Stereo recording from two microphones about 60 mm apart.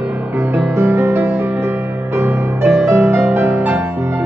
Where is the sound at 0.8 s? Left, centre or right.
Right.